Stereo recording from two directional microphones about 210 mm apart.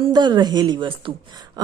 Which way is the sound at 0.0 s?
20° right (ahead or behind).